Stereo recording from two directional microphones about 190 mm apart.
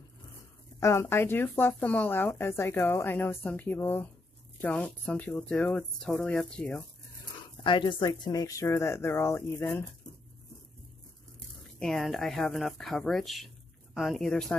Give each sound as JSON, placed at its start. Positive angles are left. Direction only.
{"t": 0.7, "sound": "speech", "side_deg": 15}
{"t": 7.6, "sound": "speech", "side_deg": 25}
{"t": 11.8, "sound": "speech", "side_deg": 5}